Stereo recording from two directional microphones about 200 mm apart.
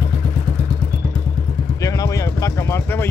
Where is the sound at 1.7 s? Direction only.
15° left (ahead or behind).